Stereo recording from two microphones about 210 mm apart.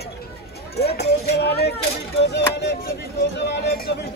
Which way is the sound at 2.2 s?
55° left (ahead or behind).